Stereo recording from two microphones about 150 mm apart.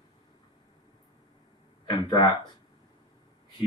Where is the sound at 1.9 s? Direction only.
30° left (ahead or behind).